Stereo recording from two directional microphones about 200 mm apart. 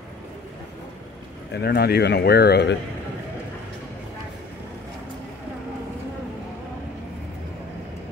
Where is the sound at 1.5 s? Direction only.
50° left (ahead or behind).